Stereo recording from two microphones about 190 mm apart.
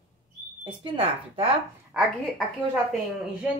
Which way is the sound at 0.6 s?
30° right (ahead or behind).